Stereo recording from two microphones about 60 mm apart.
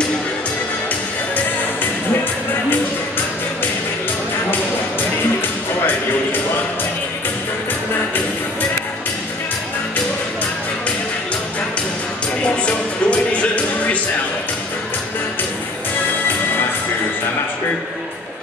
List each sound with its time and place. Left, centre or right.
12.4 s music: centre